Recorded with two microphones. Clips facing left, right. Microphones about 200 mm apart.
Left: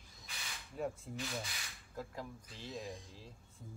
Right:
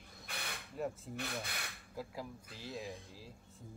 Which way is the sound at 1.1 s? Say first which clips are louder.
Right 1 dB; 60° right (ahead or behind).